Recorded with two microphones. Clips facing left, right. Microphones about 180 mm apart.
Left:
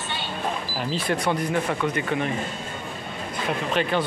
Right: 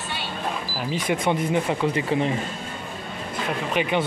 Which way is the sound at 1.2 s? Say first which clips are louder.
Right 3 dB; 20° right (ahead or behind).